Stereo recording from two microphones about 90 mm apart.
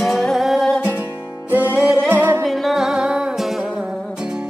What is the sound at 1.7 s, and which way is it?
Singing, 15° right (ahead or behind).